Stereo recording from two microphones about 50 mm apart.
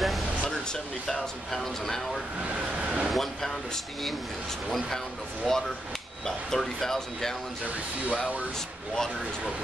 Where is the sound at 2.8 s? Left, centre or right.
Right.